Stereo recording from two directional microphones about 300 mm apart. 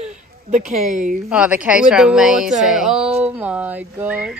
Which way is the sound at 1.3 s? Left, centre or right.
Centre.